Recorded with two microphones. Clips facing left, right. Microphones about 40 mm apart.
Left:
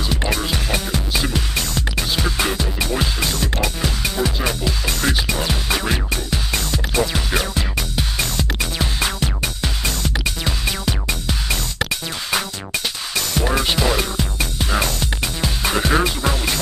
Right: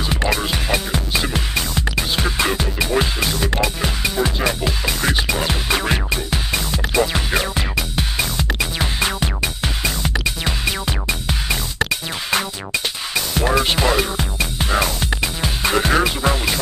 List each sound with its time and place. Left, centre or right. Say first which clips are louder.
0.1 s music: right 3 dB; right
0.7 s music: right 1 dB; centre
13.4 s music: right 2 dB; centre